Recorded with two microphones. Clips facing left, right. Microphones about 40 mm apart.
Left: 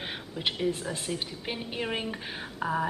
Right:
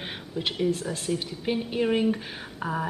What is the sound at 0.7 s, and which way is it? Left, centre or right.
Speech, left.